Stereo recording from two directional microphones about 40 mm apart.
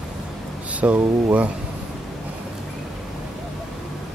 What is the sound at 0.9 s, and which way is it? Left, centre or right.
Speech, right.